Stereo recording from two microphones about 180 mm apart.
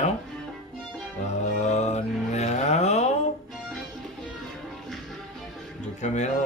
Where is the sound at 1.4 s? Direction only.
40° left (ahead or behind).